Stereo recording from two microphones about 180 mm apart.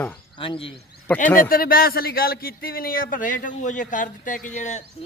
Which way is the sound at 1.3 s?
50° left (ahead or behind).